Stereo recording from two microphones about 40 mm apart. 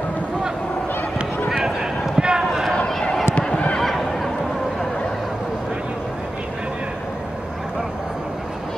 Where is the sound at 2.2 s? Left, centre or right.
Centre.